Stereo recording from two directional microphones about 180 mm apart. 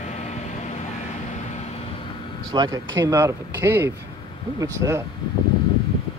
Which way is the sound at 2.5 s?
25° right (ahead or behind).